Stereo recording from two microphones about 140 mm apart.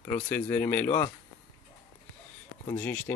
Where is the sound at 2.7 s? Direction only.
15° left (ahead or behind).